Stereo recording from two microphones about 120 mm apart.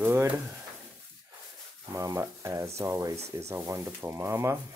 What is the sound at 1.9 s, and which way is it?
Speech, 30° right (ahead or behind).